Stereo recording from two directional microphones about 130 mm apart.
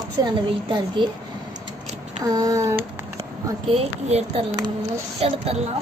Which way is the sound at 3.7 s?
50° right (ahead or behind).